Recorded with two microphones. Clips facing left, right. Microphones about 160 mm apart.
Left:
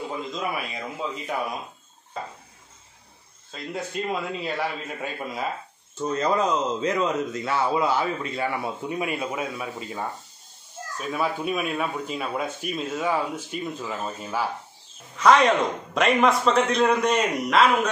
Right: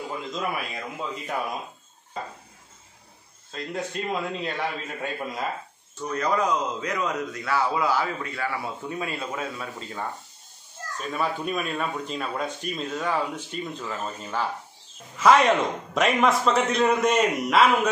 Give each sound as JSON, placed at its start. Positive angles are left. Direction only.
{"t": 0.3, "sound": "a man's voice", "side_deg": 0}
{"t": 3.5, "sound": "a man's voice", "side_deg": 5}
{"t": 5.9, "sound": "speech", "side_deg": 25}
{"t": 15.1, "sound": "a man's voice", "side_deg": -5}